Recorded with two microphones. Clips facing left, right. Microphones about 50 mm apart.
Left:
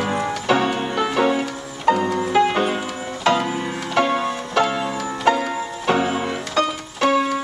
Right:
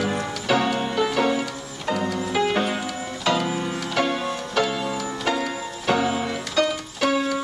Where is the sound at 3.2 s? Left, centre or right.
Left.